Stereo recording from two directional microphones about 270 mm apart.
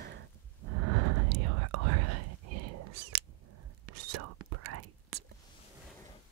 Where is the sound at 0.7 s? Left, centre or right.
Right.